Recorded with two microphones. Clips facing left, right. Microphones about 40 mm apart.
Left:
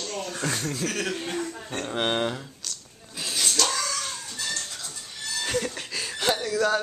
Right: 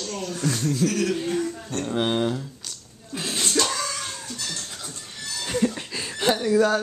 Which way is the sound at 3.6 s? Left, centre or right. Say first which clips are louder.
Even; centre.